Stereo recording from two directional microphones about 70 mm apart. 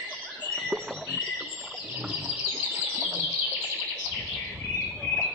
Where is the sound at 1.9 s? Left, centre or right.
Centre.